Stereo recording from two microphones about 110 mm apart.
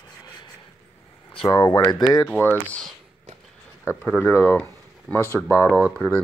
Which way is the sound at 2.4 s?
20° left (ahead or behind).